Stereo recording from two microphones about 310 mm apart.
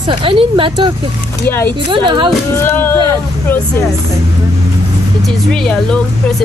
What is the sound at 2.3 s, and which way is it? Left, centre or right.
Speech, centre.